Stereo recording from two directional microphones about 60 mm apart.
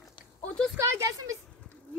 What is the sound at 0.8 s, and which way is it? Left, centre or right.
Speech, right.